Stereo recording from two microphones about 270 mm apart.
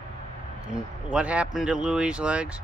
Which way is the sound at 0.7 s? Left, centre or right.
Centre.